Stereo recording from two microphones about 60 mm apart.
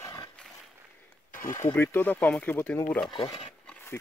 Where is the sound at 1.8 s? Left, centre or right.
Left.